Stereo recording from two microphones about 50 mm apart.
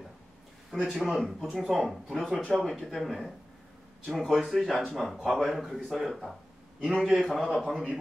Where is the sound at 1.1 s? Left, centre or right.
Centre.